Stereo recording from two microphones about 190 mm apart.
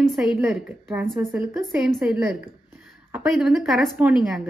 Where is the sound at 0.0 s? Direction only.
Centre (ahead or behind).